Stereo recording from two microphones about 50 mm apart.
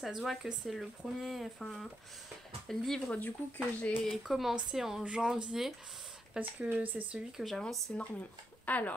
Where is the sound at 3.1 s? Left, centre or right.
Left.